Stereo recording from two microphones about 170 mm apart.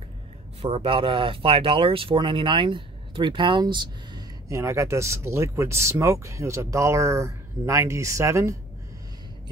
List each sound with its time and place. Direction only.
0.6 s speech: 30° right (ahead or behind); by 8.5 s 15° right (ahead or behind)